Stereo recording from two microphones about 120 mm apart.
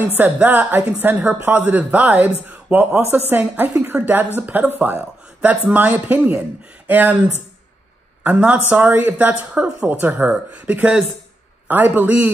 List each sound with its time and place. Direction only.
0.2 s a woman's voice: 15° right (ahead or behind)